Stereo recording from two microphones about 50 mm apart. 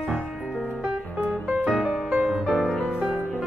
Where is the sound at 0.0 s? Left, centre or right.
Centre.